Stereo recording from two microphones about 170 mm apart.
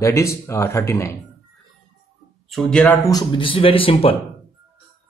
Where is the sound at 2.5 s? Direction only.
Centre (ahead or behind).